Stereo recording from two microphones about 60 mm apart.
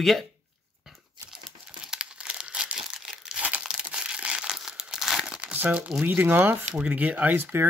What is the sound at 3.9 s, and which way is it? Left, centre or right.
Crushing, centre.